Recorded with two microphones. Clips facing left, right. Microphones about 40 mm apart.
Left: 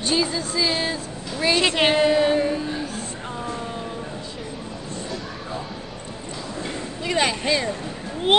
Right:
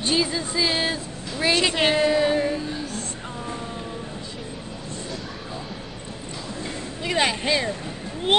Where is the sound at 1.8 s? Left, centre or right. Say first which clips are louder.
Left 3 dB; centre.